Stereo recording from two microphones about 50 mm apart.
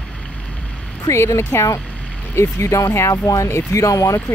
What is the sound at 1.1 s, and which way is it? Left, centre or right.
Speech, left.